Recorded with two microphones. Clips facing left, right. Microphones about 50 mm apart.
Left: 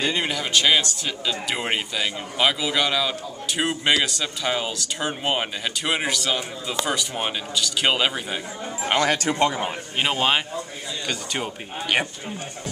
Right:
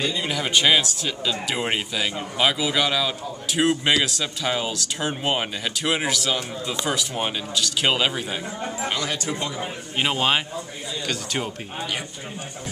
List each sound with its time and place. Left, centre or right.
0.7 s speech: centre
9.0 s a man's voice: left
9.9 s speech: centre
11.8 s speech: left